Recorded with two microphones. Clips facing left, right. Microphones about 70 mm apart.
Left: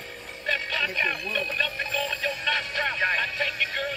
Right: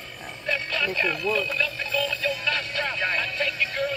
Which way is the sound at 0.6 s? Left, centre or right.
Left.